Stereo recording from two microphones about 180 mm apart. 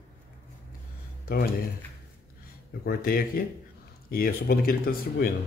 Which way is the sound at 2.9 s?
55° left (ahead or behind).